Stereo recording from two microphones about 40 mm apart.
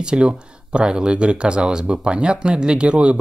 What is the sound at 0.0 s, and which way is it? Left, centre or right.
Speech, right.